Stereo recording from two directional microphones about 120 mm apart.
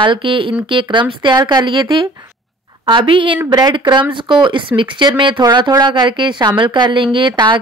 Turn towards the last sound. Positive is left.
turn(degrees=-40)  # may be behind; listen again after turning